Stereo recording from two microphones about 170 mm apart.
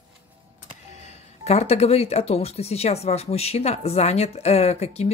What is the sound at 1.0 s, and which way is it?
Speech, 40° left (ahead or behind).